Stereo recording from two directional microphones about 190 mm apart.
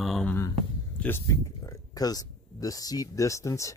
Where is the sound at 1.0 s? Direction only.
15° left (ahead or behind).